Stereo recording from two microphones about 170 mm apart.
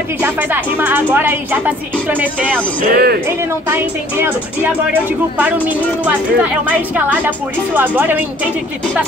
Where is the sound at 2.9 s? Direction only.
65° right (ahead or behind).